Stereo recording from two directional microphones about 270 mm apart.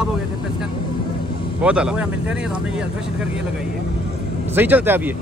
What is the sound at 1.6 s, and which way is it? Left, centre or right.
Speech, centre.